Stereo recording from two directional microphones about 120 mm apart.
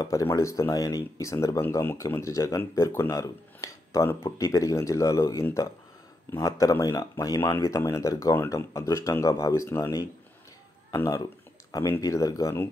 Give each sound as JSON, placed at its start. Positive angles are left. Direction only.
{"t": 0.0, "sound": "speech", "side_deg": 25}